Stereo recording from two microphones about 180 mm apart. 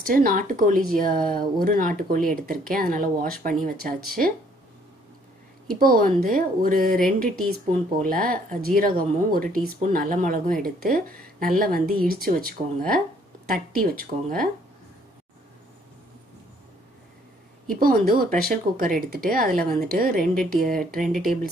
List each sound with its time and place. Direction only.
0.0 s speech: 55° right (ahead or behind)
5.8 s speech: 55° right (ahead or behind)
17.6 s speech: 50° right (ahead or behind)